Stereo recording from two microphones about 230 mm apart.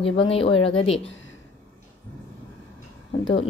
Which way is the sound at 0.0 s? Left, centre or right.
Left.